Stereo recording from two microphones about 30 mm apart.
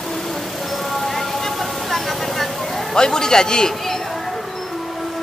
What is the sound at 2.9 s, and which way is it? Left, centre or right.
A man's voice, left.